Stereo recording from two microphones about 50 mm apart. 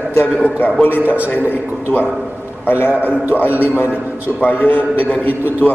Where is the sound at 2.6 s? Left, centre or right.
Left.